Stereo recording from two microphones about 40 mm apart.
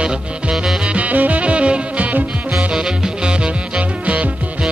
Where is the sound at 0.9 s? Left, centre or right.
Right.